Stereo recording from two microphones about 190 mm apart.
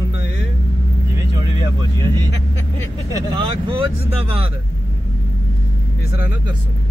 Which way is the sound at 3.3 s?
25° right (ahead or behind).